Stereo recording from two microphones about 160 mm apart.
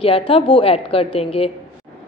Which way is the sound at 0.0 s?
35° left (ahead or behind).